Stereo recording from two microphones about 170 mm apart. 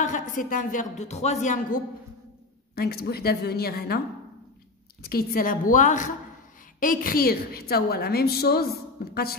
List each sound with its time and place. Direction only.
0.0 s speech: 50° left (ahead or behind)
2.7 s a woman's voice: 65° left (ahead or behind)
5.0 s a woman's voice: 60° left (ahead or behind)